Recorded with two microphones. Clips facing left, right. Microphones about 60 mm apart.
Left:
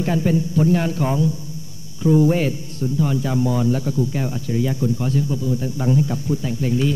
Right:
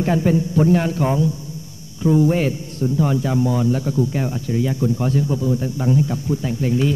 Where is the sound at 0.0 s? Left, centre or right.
Right.